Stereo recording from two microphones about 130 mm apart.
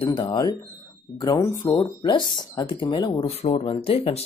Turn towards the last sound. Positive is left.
turn(degrees=50)  # may be behind; listen again after turning